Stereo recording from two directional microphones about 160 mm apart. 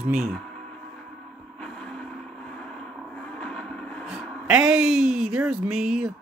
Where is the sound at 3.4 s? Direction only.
5° left (ahead or behind).